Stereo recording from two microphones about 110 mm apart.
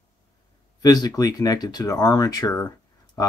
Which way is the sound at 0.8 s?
35° left (ahead or behind).